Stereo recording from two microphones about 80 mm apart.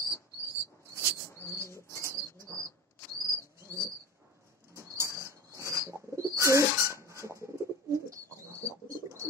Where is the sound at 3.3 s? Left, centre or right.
Right.